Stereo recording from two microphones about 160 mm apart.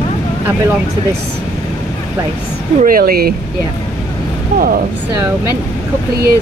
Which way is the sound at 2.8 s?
65° right (ahead or behind).